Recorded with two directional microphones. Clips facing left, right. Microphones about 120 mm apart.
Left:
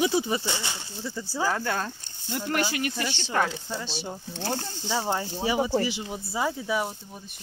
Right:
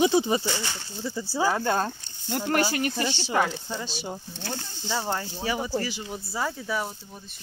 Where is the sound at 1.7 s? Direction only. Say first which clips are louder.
Right 4 dB; 30° right (ahead or behind).